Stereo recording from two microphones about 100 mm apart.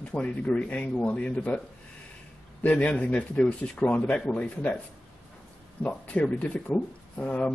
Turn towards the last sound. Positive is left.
turn(degrees=15)  # may be behind; listen again after turning